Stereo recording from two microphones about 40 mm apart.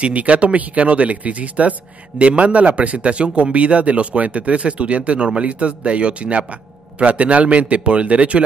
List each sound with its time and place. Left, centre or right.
0.0 s speech: right